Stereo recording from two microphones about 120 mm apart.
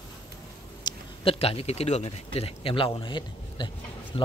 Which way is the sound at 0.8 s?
35° left (ahead or behind).